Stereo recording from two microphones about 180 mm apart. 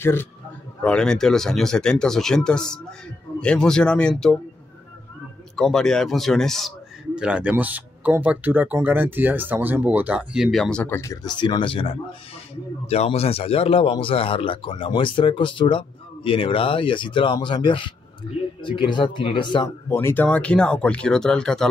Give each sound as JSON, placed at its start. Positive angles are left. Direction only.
{"t": 0.0, "sound": "a man's voice", "side_deg": 15}
{"t": 5.6, "sound": "speech", "side_deg": 5}
{"t": 19.9, "sound": "speech", "side_deg": 15}